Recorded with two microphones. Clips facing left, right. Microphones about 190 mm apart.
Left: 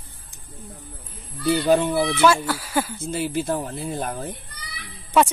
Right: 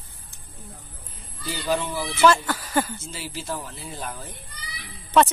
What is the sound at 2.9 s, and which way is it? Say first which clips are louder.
A man's voice: left 11 dB; 55° left (ahead or behind).